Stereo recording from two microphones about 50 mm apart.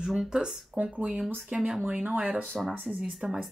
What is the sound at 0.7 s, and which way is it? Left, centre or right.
Speech, right.